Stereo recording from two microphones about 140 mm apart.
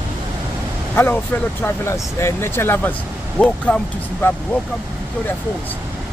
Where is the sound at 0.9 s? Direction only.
15° left (ahead or behind).